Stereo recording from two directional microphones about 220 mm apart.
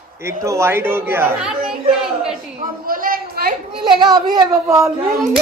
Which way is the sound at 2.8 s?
40° right (ahead or behind).